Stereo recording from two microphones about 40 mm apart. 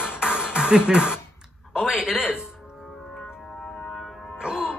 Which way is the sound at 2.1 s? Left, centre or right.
Left.